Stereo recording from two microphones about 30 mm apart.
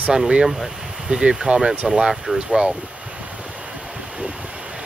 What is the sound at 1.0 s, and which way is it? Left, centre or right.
Speech, right.